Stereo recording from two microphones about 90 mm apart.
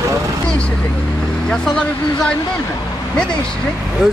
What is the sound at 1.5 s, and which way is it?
Speech, 5° left (ahead or behind).